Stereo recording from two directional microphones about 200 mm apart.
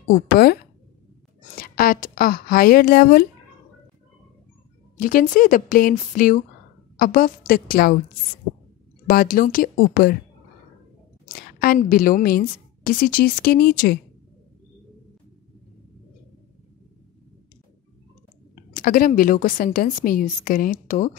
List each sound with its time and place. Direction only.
0.1 s a woman's voice: 50° left (ahead or behind)
4.9 s a woman's voice: 40° left (ahead or behind)
9.0 s a woman's voice: 45° left (ahead or behind)
11.3 s a woman's voice: 45° left (ahead or behind)
18.8 s a woman's voice: 45° left (ahead or behind)